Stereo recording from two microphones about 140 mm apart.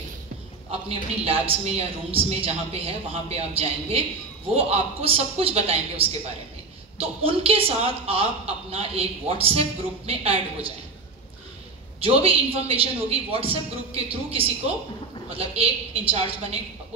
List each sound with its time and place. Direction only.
1.2 s a woman's voice: 45° right (ahead or behind)
12.0 s a woman's voice: 45° right (ahead or behind)